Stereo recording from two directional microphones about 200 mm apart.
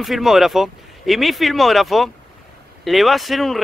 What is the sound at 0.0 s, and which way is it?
Speech, centre (ahead or behind).